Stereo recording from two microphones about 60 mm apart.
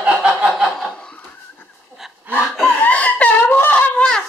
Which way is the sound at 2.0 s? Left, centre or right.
Centre.